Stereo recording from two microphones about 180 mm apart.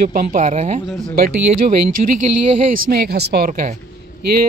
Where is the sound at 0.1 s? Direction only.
45° right (ahead or behind).